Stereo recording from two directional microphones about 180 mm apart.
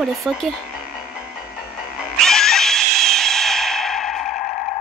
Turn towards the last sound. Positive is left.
turn(degrees=0)  # may be behind; listen again after turning